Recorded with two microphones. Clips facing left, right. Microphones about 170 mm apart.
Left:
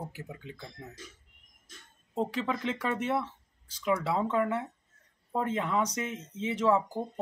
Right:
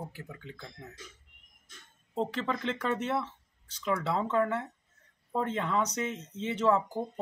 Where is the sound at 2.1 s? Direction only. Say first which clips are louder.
Left 1 dB; 5° left (ahead or behind).